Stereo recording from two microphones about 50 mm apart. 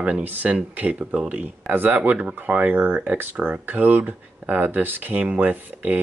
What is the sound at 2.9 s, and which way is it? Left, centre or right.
Speech, right.